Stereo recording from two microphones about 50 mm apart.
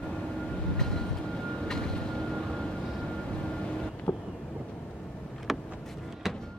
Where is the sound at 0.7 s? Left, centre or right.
Centre.